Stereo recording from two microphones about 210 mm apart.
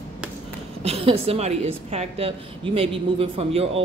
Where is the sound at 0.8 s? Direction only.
30° right (ahead or behind).